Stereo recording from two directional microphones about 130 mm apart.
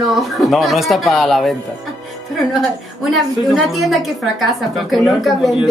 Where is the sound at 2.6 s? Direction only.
Centre (ahead or behind).